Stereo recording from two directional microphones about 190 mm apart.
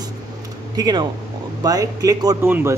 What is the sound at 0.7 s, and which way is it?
A man's voice, 20° right (ahead or behind).